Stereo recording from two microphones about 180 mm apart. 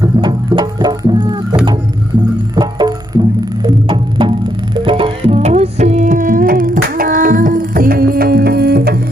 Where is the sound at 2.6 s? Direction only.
20° right (ahead or behind).